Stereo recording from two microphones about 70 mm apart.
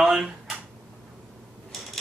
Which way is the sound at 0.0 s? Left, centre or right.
Centre.